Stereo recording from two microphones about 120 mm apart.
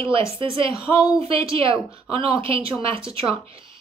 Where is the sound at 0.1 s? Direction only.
45° right (ahead or behind).